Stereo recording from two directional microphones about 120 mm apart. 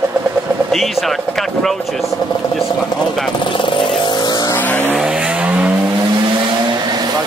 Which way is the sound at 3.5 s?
45° left (ahead or behind).